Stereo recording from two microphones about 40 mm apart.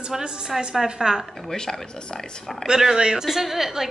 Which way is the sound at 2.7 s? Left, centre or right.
Centre.